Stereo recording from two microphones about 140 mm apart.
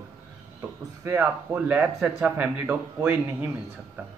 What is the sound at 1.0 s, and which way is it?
Speech, 15° right (ahead or behind).